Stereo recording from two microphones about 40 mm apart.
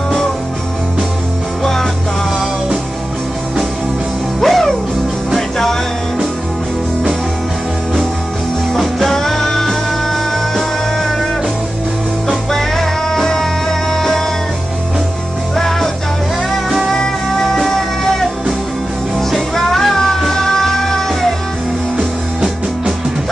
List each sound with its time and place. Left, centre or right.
1.6 s music: centre
4.4 s music: centre
8.7 s music: centre
12.4 s music: centre
15.5 s music: centre
16.9 s music: centre
21.9 s music: centre